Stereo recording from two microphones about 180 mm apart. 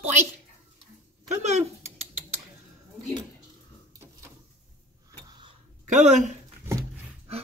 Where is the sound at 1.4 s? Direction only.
40° right (ahead or behind).